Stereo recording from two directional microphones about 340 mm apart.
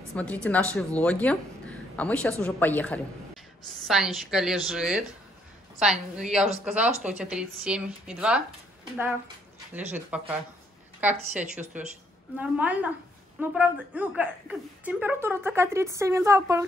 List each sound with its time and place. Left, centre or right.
0.1 s a woman's voice: centre
9.7 s a woman's voice: centre